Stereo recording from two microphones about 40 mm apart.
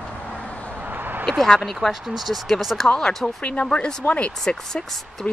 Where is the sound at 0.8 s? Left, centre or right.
Right.